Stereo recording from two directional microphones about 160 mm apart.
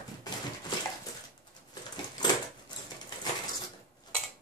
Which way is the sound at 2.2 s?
25° left (ahead or behind).